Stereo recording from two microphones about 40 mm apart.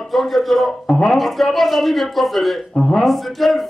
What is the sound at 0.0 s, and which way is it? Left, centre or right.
Speech, centre.